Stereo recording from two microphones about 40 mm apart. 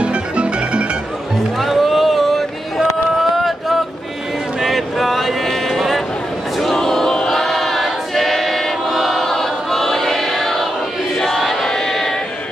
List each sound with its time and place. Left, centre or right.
0.0 s music: right
1.6 s a sound: centre
6.6 s choir: centre